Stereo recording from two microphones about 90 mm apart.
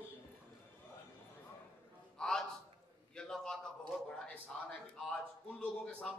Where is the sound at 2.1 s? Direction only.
5° left (ahead or behind).